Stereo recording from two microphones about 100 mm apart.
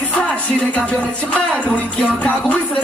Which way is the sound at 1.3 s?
10° left (ahead or behind).